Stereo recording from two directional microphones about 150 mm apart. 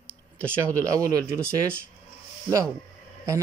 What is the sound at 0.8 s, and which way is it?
Speech, 20° right (ahead or behind).